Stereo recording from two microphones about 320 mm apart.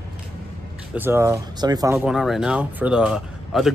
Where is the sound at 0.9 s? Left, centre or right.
Centre.